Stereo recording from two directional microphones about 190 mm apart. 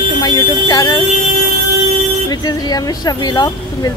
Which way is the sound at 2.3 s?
20° left (ahead or behind).